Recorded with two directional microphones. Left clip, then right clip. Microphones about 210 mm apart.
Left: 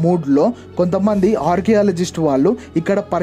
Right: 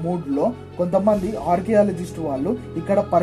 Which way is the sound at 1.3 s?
45° left (ahead or behind).